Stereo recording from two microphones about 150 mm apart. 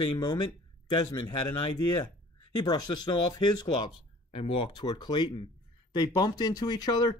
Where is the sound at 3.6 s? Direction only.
30° left (ahead or behind).